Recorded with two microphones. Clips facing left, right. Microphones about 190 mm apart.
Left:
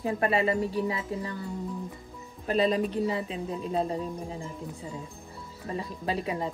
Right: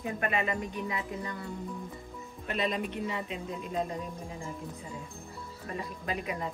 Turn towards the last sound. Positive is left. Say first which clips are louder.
# left 4 dB
turn(degrees=30)  # may be behind; listen again after turning